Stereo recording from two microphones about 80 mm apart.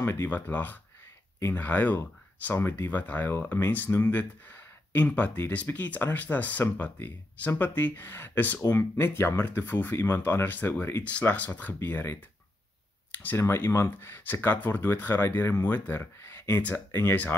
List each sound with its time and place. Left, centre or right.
0.0 s speech: left
11.1 s speech: centre
13.4 s speech: left